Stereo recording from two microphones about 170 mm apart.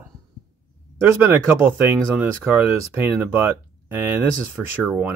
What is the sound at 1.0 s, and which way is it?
Speech, 15° right (ahead or behind).